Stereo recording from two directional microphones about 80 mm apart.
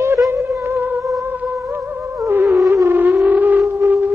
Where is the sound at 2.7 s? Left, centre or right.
Right.